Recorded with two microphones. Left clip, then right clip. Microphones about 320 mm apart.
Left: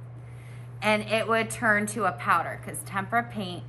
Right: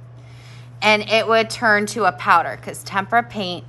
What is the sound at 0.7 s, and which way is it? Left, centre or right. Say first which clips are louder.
A woman's voice: right 9 dB; centre.